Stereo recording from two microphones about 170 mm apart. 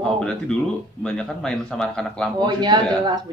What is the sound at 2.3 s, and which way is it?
Speech, 25° right (ahead or behind).